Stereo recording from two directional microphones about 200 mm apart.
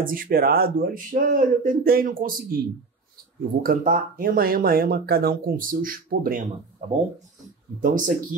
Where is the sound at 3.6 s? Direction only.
45° right (ahead or behind).